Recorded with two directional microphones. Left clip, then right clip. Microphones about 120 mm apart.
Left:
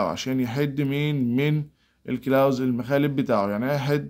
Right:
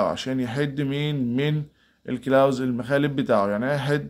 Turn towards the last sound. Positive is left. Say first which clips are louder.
# right 1 dB
turn(degrees=20)  # may be behind; listen again after turning